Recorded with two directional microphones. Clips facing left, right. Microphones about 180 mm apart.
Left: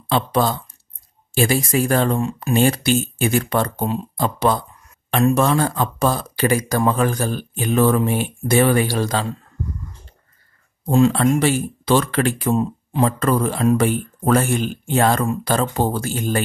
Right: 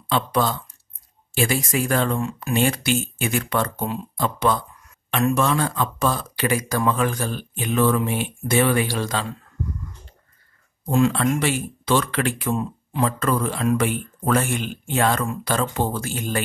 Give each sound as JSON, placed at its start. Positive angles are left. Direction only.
{"t": 0.1, "sound": "speech", "side_deg": 35}
{"t": 11.1, "sound": "speech", "side_deg": 35}